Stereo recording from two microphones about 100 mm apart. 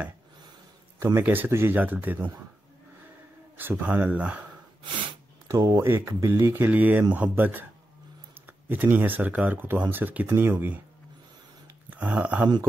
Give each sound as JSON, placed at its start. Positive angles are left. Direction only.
{"t": 0.9, "sound": "speech", "side_deg": -25}
{"t": 3.5, "sound": "speech", "side_deg": -15}
{"t": 5.5, "sound": "speech", "side_deg": -30}
{"t": 11.9, "sound": "speech", "side_deg": -15}